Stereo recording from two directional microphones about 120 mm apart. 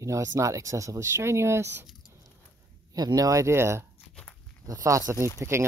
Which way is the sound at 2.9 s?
30° right (ahead or behind).